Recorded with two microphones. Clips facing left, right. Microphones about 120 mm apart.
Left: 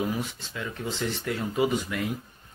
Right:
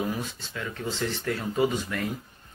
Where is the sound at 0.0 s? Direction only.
15° left (ahead or behind).